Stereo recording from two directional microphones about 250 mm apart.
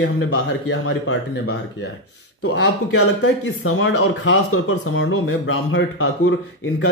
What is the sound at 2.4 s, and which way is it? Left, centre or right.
Speech, left.